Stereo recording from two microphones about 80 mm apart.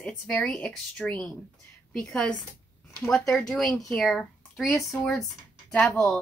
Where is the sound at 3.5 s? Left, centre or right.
Centre.